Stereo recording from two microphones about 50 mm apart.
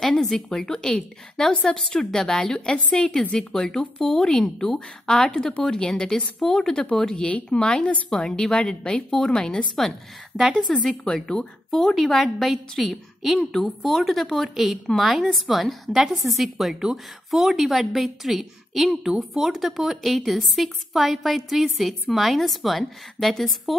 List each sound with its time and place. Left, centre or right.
0.0 s a woman's voice: centre